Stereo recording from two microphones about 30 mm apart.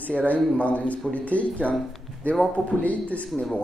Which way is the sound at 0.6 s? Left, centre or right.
Left.